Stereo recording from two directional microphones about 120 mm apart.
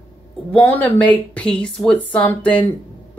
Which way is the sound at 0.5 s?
15° left (ahead or behind).